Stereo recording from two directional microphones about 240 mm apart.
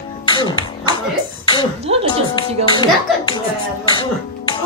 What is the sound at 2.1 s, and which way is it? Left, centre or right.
Speech, centre.